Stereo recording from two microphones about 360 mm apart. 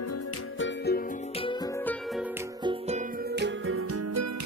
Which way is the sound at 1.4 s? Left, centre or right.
Centre.